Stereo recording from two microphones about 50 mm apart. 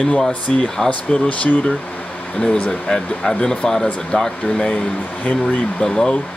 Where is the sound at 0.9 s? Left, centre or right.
Left.